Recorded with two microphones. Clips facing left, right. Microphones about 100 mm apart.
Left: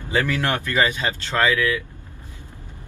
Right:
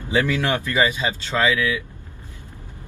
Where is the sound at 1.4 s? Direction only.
5° right (ahead or behind).